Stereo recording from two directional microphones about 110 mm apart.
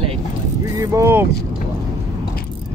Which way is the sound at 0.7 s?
30° right (ahead or behind).